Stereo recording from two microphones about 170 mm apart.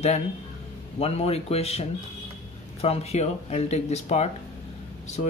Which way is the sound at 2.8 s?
35° left (ahead or behind).